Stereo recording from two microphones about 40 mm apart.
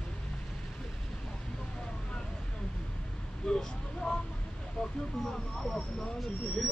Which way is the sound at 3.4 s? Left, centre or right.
Left.